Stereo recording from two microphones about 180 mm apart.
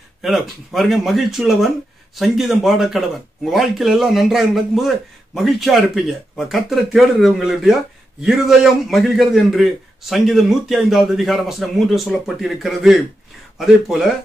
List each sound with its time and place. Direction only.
0.2 s a man's voice: centre (ahead or behind)